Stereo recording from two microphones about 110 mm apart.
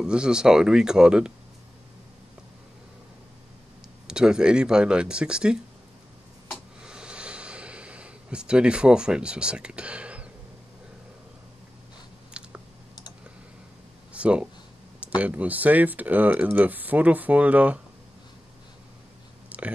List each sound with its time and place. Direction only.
0.0 s speech: 5° right (ahead or behind)
4.1 s speech: 5° right (ahead or behind)
6.5 s a sound: 5° right (ahead or behind)
12.4 s clicking: 10° right (ahead or behind)
14.1 s speech: 10° right (ahead or behind)
19.5 s whispering: 15° right (ahead or behind)